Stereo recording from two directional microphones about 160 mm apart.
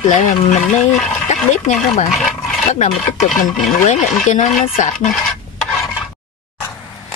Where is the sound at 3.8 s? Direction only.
45° left (ahead or behind).